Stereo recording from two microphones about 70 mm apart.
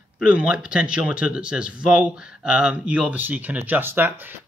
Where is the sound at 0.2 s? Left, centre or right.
Centre.